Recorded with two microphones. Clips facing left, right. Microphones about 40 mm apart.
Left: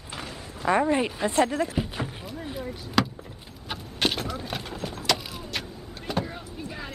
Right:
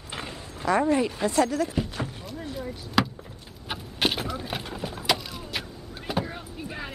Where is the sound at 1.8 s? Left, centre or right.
Centre.